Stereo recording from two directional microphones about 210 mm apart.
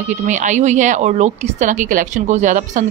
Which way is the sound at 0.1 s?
35° right (ahead or behind).